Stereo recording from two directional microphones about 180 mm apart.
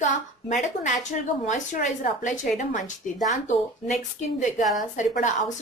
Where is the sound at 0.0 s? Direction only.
45° left (ahead or behind).